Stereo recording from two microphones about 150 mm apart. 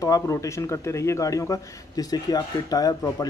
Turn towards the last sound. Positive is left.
turn(degrees=25)  # may be behind; listen again after turning